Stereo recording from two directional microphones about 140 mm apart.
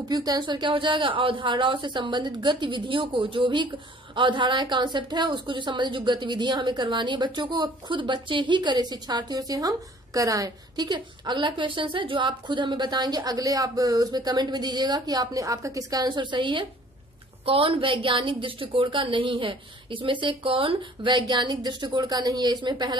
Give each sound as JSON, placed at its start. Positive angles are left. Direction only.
{"t": 0.1, "sound": "a woman's voice", "side_deg": -30}